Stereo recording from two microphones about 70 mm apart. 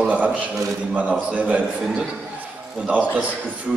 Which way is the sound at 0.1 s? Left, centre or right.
Right.